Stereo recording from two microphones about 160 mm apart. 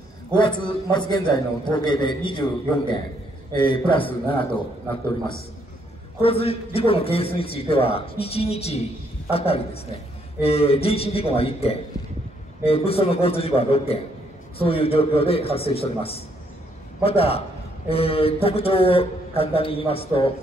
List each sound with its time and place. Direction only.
0.4 s a man's voice: 30° left (ahead or behind)
3.5 s a man's voice: 30° left (ahead or behind)
6.2 s a man's voice: 35° left (ahead or behind)